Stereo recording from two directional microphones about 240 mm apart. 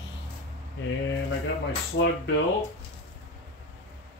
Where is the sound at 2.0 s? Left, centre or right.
Left.